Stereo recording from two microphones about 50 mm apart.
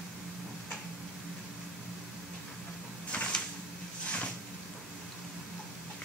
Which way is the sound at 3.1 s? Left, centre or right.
Left.